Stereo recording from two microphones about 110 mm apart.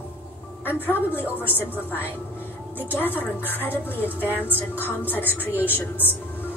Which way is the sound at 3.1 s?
15° left (ahead or behind).